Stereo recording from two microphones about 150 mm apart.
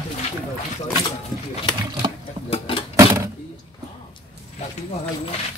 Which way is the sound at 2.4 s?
40° left (ahead or behind).